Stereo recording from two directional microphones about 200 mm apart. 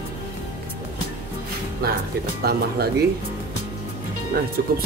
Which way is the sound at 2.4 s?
50° right (ahead or behind).